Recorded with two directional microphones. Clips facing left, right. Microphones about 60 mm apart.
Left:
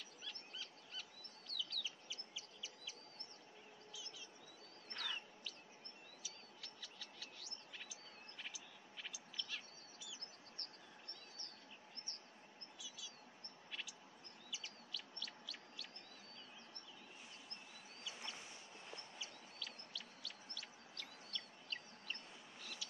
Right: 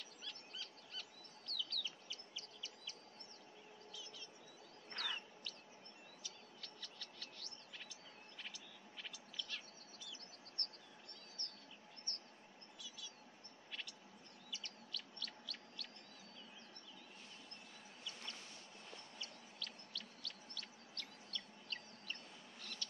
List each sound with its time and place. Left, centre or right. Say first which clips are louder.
0.2 s bird vocalization: even; centre
4.9 s bird: right 2 dB; centre
6.2 s bird: right 1 dB; centre
10.6 s bird: right 7 dB; centre
11.4 s chirp: right 3 dB; right
12.1 s bird: right 7 dB; centre
13.7 s a sound: even; centre
14.5 s chirp: right 1 dB; centre
18.0 s chicken: left 1 dB; centre
22.6 s mouse: right 1 dB; centre